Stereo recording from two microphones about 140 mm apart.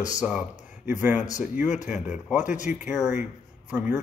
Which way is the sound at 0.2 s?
10° right (ahead or behind).